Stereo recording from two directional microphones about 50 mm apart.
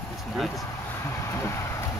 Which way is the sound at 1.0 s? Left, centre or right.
Left.